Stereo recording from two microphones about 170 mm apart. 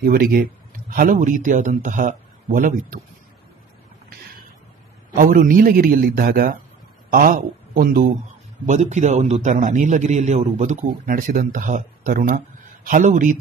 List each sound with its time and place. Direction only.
0.0 s speech: 60° right (ahead or behind)
5.1 s a man's voice: 55° right (ahead or behind)
8.6 s a man's voice: 45° right (ahead or behind)